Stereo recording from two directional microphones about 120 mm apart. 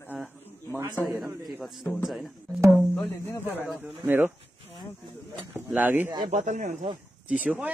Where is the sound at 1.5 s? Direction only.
Centre (ahead or behind).